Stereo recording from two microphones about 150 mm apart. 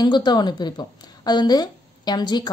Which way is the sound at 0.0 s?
30° left (ahead or behind).